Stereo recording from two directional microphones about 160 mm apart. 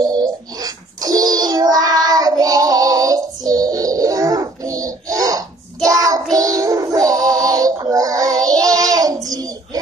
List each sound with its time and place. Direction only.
0.0 s child singing: 25° right (ahead or behind)
6.3 s synthetic singing: 20° right (ahead or behind)